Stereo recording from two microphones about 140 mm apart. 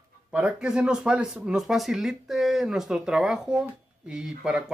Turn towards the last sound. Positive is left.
turn(degrees=-5)  # may be behind; listen again after turning